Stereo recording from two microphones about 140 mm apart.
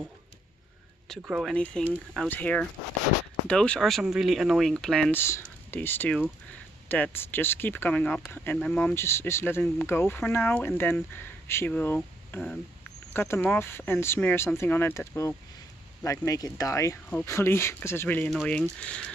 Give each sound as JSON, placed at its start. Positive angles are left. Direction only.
{"t": 1.2, "sound": "speech", "side_deg": 0}
{"t": 5.1, "sound": "speech", "side_deg": 15}